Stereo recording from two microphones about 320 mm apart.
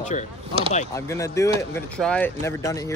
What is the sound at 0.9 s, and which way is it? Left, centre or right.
Speech, centre.